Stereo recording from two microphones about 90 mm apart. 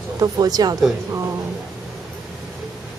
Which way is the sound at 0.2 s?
45° right (ahead or behind).